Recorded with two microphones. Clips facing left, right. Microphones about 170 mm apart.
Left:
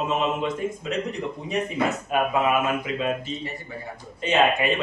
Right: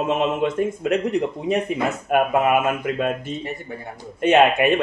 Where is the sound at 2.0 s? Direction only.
55° right (ahead or behind).